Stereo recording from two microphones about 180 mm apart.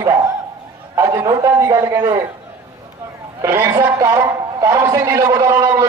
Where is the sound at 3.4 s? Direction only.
15° right (ahead or behind).